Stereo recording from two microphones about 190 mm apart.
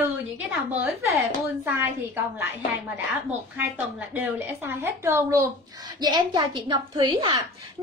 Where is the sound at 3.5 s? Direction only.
10° right (ahead or behind).